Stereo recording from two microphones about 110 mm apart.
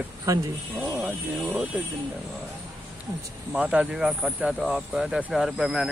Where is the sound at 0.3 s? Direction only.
30° right (ahead or behind).